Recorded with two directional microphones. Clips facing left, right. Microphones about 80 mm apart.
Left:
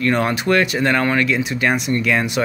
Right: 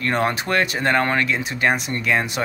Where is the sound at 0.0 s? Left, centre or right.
Right.